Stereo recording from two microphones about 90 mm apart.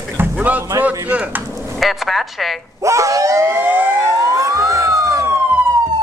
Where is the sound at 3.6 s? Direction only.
20° right (ahead or behind).